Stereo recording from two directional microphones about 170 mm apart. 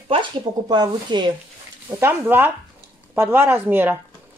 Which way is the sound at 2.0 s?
15° right (ahead or behind).